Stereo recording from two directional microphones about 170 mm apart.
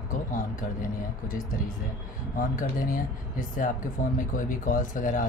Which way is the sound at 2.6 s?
55° left (ahead or behind).